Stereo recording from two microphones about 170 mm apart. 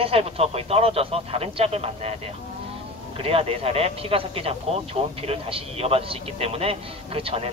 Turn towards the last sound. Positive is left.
turn(degrees=-35)  # may be behind; listen again after turning